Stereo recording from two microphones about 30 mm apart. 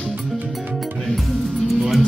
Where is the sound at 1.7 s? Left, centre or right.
Centre.